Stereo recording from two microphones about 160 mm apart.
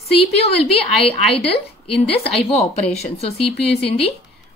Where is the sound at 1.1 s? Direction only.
35° left (ahead or behind).